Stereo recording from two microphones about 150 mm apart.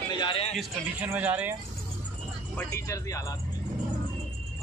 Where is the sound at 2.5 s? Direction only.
15° left (ahead or behind).